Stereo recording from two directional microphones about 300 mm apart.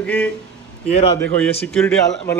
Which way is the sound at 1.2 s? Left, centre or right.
Centre.